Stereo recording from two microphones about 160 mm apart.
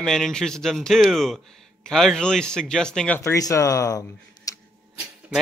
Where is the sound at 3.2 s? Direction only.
20° left (ahead or behind).